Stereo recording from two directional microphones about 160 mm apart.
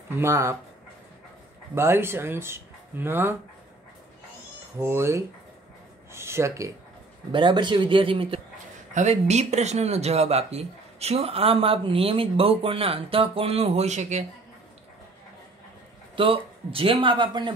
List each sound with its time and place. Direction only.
0.2 s speech: 15° right (ahead or behind)
1.8 s speech: 15° right (ahead or behind)
4.7 s speech: 15° right (ahead or behind)
7.3 s speech: 30° right (ahead or behind)
8.9 s speech: 45° right (ahead or behind)
16.2 s speech: 35° right (ahead or behind)